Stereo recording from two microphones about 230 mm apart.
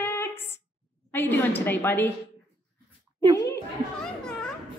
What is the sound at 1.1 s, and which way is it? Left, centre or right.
A woman's voice, centre.